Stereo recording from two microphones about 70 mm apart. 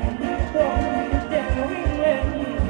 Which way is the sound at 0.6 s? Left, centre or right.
Centre.